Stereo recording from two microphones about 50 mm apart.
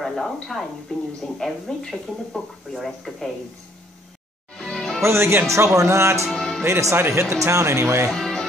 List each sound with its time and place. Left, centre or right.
0.0 s speech: centre
4.6 s music: centre
5.0 s speech: right
6.3 s music: centre
6.6 s speech: right
8.1 s music: centre